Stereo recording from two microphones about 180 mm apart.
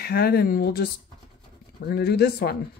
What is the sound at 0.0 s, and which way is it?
Speech, 60° left (ahead or behind).